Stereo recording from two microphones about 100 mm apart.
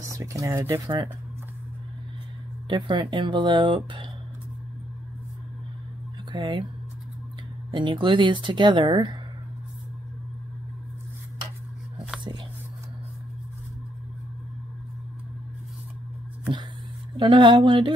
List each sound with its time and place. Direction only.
0.0 s speech: 35° right (ahead or behind)
0.8 s speech: 50° right (ahead or behind)
2.7 s speech: 55° right (ahead or behind)
6.3 s speech: 50° right (ahead or behind)
7.7 s speech: 55° right (ahead or behind)
17.2 s speech: 50° right (ahead or behind)